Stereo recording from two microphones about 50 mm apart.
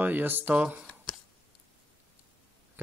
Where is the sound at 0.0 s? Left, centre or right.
Right.